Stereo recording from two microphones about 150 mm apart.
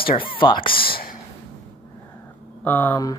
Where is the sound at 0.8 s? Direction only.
80° left.